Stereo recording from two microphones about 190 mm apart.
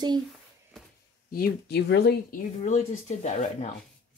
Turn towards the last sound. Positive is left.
turn(degrees=35)  # may be behind; listen again after turning